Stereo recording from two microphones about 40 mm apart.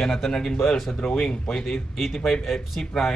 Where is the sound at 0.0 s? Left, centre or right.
Centre.